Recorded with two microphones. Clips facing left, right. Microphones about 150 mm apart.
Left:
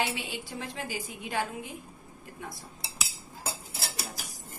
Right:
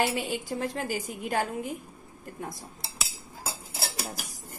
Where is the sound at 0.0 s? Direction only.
45° right (ahead or behind).